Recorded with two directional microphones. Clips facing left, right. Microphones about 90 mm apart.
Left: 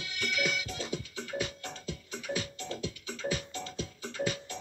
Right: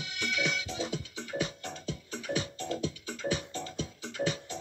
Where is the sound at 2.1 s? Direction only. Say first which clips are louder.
Right 2 dB; 30° right (ahead or behind).